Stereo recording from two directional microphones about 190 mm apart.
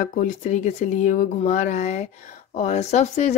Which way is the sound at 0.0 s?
40° left (ahead or behind).